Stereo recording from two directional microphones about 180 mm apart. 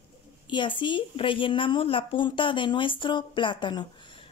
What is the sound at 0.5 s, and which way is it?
A woman's voice, 25° left (ahead or behind).